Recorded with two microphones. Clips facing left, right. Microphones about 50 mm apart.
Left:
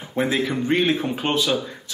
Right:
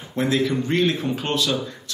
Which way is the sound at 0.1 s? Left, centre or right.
Centre.